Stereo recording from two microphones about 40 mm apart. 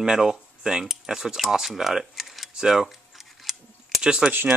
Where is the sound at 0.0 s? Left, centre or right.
Centre.